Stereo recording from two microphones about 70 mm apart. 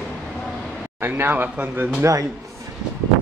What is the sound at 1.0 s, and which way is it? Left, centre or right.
Speech, right.